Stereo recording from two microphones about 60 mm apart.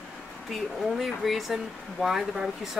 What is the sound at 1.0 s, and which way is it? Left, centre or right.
Speech, centre.